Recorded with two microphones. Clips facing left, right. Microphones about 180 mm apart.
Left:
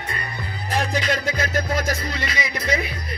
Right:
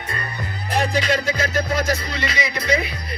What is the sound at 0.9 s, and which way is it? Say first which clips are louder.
Music: right 2 dB; 50° left (ahead or behind).